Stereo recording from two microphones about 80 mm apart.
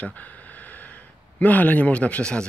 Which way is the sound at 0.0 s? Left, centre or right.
Centre.